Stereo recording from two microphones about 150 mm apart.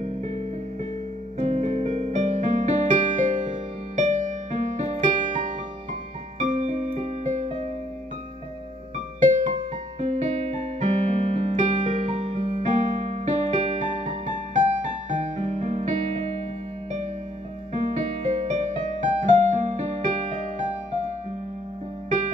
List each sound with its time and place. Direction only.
1.4 s music: 50° right (ahead or behind)
9.2 s music: 50° right (ahead or behind)
17.9 s music: 50° right (ahead or behind)